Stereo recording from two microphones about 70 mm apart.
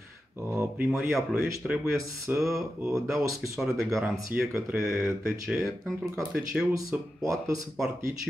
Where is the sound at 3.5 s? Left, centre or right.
Centre.